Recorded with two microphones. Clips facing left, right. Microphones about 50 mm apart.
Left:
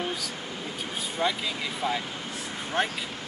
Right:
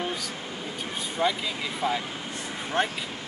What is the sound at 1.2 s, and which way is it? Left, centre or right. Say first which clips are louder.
Speech: right 2 dB; centre.